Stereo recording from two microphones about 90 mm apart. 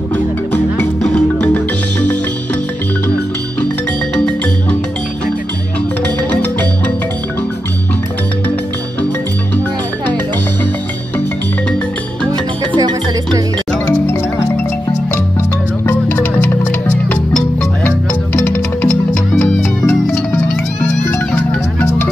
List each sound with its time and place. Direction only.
1.0 s music: 10° left (ahead or behind)
4.1 s music: 15° left (ahead or behind)
6.3 s music: 15° left (ahead or behind)
12.7 s music: 55° right (ahead or behind)
15.9 s music: 20° left (ahead or behind)
18.4 s music: 20° left (ahead or behind)
21.4 s music: 25° left (ahead or behind)